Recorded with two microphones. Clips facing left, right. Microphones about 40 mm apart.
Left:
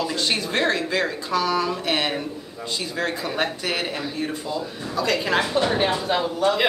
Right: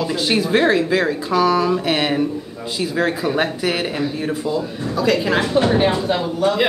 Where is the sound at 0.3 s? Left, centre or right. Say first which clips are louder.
Right 8 dB; centre.